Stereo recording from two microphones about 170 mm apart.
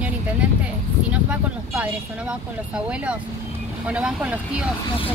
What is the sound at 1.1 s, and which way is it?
Speech, 10° right (ahead or behind).